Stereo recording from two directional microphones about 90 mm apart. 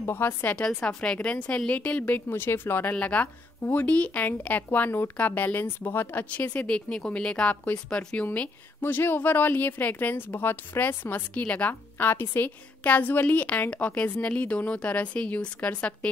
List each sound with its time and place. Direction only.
0.0 s a woman's voice: 25° left (ahead or behind)
0.6 s a woman's voice: 10° left (ahead or behind)
8.3 s a woman's voice: 20° left (ahead or behind)